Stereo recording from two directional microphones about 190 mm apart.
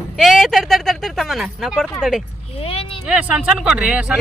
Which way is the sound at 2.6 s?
30° left (ahead or behind).